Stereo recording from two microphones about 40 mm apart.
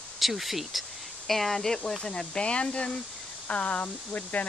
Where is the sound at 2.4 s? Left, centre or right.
Left.